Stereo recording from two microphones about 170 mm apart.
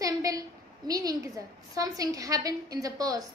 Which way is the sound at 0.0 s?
20° right (ahead or behind).